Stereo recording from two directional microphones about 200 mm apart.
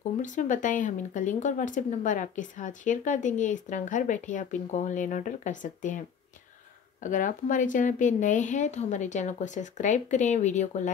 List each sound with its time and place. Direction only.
0.2 s speech: 40° left (ahead or behind)